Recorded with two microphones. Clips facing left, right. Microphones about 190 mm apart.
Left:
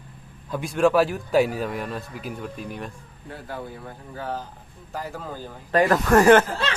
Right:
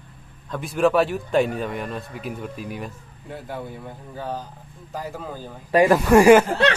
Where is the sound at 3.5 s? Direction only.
15° right (ahead or behind).